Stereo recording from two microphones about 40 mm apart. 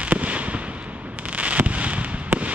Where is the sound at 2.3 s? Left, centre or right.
Right.